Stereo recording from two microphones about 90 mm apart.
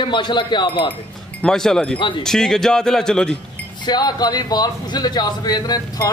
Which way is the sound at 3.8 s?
50° left (ahead or behind).